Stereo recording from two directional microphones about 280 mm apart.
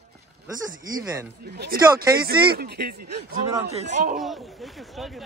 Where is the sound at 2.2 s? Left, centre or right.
Right.